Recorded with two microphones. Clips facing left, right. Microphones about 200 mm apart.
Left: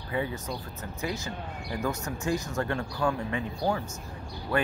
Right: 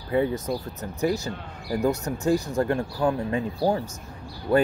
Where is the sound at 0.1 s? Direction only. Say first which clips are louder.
Right 8 dB; 45° right (ahead or behind).